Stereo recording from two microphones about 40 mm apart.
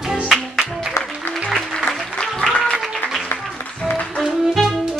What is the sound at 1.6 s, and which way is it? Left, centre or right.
Music, centre.